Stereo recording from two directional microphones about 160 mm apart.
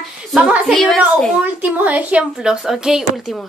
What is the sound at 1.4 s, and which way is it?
Speech, 10° right (ahead or behind).